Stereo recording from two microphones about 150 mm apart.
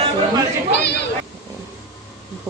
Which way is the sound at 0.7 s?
90° left.